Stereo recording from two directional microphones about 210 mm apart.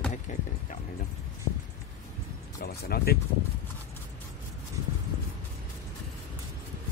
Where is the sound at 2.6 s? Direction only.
45° left (ahead or behind).